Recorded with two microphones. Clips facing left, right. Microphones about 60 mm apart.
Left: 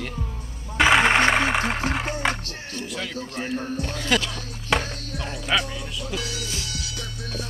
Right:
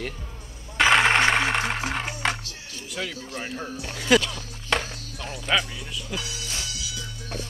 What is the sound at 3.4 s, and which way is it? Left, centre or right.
Speech, left.